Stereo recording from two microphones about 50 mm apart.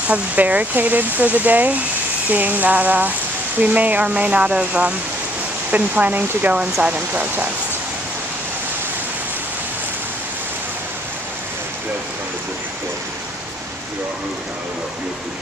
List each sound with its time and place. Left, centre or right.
0.1 s speech: right
6.5 s speech: right
6.9 s speech: right